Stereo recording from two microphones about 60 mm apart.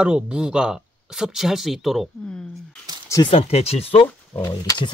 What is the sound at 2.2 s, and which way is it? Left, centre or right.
Speech, centre.